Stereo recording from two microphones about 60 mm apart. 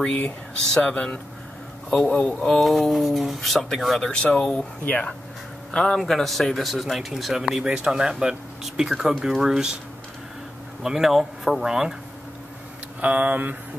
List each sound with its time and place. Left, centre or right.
0.7 s speech: centre
2.4 s speech: centre
4.1 s speech: centre
4.8 s speech: left
5.7 s a man's voice: centre
5.9 s speech: centre
10.8 s speech: centre
13.0 s a sound: right